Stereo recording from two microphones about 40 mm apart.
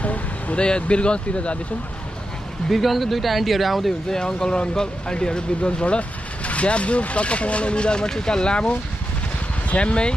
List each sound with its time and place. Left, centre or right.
0.0 s vehicle: left
0.7 s speech: left
2.7 s speech: centre
4.1 s speech: centre